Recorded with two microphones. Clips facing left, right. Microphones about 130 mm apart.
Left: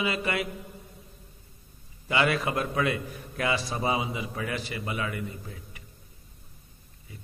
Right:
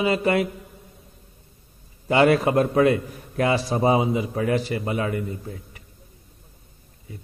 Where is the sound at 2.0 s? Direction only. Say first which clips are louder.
Right 8 dB; 40° right (ahead or behind).